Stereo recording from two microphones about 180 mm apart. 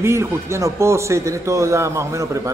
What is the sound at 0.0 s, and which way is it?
A man's voice, 15° right (ahead or behind).